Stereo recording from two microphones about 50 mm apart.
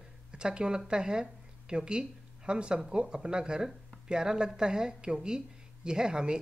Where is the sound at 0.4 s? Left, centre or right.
Centre.